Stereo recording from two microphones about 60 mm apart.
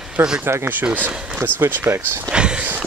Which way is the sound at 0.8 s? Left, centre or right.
Right.